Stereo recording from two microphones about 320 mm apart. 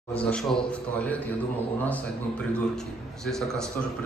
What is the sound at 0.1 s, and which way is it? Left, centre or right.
A man's voice, centre.